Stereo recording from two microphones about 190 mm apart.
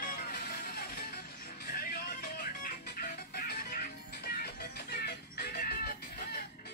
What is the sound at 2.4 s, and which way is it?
Music, 50° left (ahead or behind).